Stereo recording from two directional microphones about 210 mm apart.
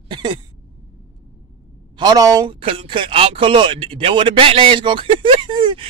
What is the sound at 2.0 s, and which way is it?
Speech, 20° right (ahead or behind).